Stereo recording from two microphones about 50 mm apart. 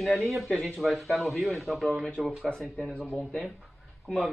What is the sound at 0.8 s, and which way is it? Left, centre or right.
Speech, centre.